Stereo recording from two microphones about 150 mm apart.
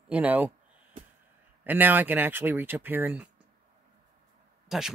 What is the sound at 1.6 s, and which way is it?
Speech, 15° right (ahead or behind).